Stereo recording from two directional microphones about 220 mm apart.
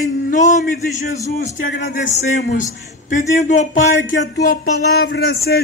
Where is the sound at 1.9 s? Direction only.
50° left (ahead or behind).